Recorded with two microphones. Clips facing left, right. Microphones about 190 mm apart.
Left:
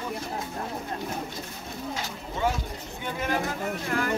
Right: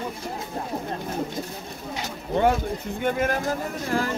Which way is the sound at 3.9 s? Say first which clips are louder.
Right 3 dB; 30° right (ahead or behind).